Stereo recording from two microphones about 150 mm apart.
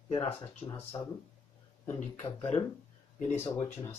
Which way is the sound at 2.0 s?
45° left (ahead or behind).